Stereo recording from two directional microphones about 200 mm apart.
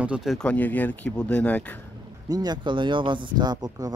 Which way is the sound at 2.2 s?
20° right (ahead or behind).